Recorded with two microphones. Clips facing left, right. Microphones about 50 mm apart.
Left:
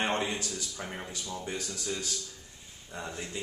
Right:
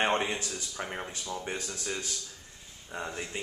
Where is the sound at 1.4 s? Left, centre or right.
Right.